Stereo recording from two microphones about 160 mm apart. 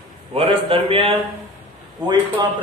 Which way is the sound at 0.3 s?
35° right (ahead or behind).